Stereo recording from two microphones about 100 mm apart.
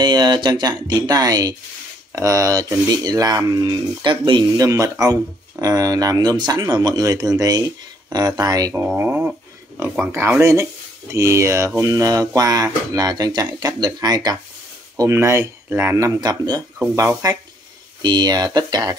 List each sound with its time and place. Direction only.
0.0 s speech: 45° right (ahead or behind)
4.6 s speech: 35° right (ahead or behind)
8.7 s speech: 20° right (ahead or behind)
10.4 s speech: 30° right (ahead or behind)
15.0 s speech: 30° right (ahead or behind)
16.2 s speech: 40° right (ahead or behind)